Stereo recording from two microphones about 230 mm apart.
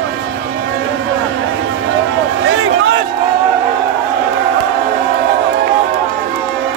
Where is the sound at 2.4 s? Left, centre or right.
Right.